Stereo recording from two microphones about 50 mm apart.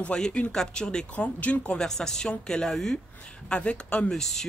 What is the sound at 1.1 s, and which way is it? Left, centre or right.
Speech, left.